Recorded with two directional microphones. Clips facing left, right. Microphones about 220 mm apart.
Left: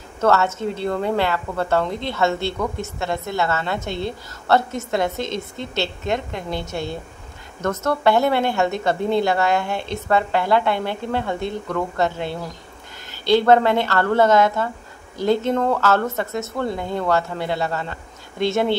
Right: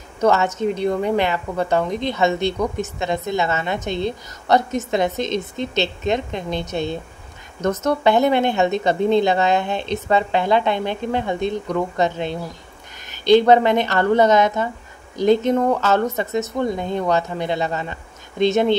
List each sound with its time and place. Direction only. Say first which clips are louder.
0.2 s a woman's voice: right 1 dB; 15° right (ahead or behind)